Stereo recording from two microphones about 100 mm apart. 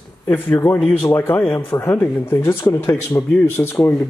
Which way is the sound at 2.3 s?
30° left (ahead or behind).